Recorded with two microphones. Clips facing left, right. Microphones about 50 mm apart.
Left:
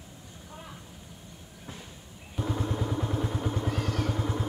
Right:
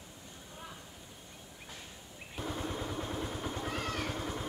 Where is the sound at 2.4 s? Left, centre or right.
Centre.